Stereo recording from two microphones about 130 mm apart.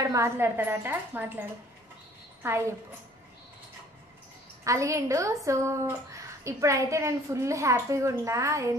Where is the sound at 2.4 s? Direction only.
20° right (ahead or behind).